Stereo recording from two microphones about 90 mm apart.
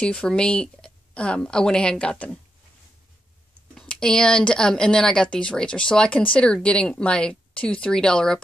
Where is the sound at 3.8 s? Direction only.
10° left (ahead or behind).